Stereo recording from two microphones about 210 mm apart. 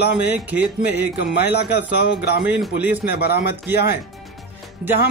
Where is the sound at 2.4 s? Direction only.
10° right (ahead or behind).